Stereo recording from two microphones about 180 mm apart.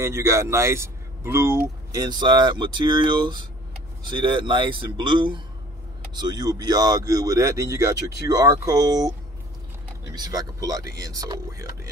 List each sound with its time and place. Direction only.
0.0 s speech: 15° right (ahead or behind)
10.1 s speech: 20° right (ahead or behind)